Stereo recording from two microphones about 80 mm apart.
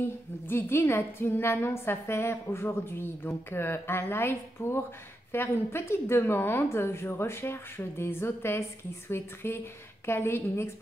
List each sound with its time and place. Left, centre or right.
0.0 s a woman's voice: left